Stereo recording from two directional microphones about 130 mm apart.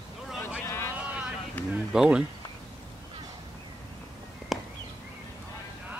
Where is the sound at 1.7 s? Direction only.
5° right (ahead or behind).